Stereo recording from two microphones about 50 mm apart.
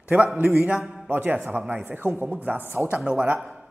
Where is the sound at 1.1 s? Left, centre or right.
Right.